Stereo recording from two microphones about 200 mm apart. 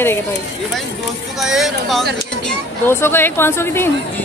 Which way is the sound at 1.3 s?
Centre (ahead or behind).